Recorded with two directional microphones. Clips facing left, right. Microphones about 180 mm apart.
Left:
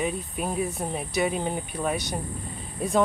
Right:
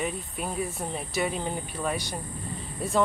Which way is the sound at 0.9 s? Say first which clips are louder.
Left 3 dB; 15° left (ahead or behind).